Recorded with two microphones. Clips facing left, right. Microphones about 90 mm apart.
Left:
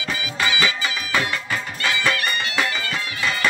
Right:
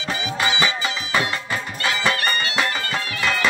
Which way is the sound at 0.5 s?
25° right (ahead or behind).